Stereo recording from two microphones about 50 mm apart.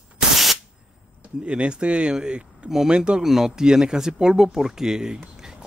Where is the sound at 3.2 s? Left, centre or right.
Centre.